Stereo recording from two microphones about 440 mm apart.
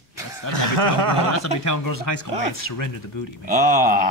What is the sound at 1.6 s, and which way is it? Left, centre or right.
Speech, left.